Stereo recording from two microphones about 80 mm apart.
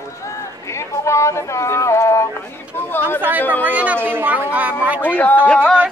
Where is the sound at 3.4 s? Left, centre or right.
Left.